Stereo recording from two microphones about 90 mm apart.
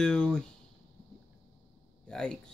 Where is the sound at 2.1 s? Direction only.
10° left (ahead or behind).